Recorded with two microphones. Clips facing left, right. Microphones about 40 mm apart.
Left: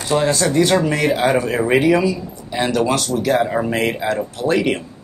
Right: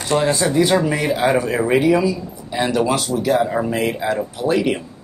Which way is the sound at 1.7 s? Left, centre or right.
Left.